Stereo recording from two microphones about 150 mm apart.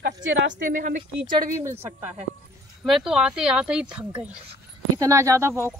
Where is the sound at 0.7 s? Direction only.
60° right (ahead or behind).